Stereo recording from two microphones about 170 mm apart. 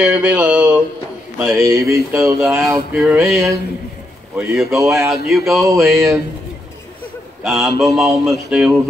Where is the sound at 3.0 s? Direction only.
Centre (ahead or behind).